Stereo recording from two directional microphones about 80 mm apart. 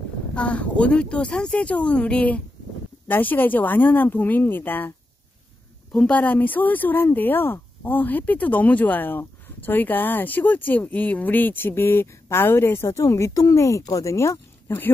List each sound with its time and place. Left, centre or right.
0.3 s speech: centre; by 14.8 s left